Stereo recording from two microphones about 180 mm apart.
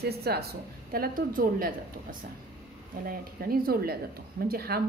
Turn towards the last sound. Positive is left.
turn(degrees=-60)  # may be behind; listen again after turning